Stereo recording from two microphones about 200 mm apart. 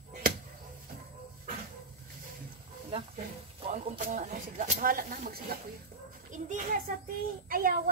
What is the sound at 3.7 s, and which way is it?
A child's voice, 40° right (ahead or behind).